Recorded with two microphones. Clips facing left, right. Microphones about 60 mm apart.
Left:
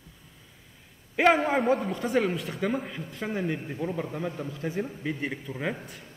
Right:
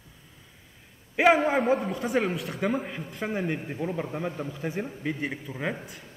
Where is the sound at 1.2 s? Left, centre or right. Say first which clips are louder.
Right 1 dB; centre.